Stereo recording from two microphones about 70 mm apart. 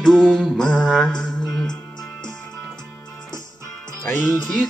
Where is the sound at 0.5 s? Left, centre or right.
Centre.